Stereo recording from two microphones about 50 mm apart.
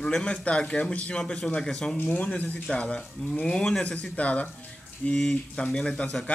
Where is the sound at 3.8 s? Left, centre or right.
Left.